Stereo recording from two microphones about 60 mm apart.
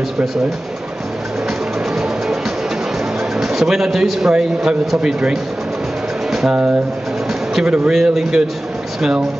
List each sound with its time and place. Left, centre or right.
3.3 s a man's voice: centre
6.5 s a man's voice: centre